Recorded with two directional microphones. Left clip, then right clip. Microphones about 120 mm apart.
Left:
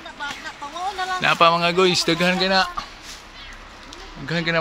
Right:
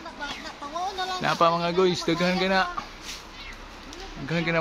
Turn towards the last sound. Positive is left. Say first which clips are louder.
# left 4 dB
turn(degrees=20)  # may be behind; listen again after turning